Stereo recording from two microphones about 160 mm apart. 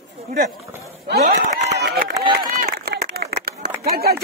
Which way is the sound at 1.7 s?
90° right.